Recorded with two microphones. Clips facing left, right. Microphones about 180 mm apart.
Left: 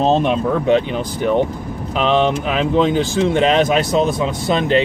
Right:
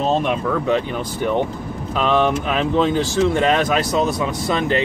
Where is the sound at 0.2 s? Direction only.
25° left (ahead or behind).